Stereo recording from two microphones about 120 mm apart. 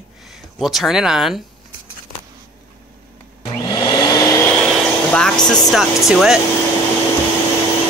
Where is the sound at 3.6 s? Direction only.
40° left (ahead or behind).